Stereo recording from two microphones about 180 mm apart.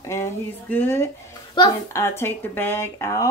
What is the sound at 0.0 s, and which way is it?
Speech, 15° left (ahead or behind).